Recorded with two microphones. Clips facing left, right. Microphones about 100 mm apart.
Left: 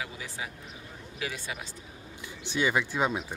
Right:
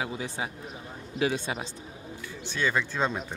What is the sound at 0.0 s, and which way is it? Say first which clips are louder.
A man's voice: right 5 dB; 30° right (ahead or behind).